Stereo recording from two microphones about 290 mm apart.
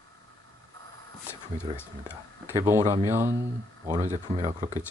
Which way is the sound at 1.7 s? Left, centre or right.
Centre.